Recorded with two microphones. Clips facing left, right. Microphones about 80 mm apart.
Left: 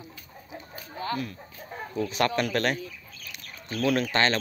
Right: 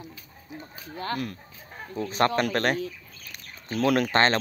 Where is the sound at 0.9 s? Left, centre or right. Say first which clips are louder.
Even; right.